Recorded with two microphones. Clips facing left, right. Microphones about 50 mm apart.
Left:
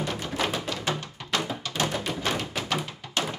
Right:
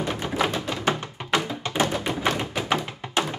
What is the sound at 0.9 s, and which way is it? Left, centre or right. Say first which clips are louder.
Music: right 6 dB; right.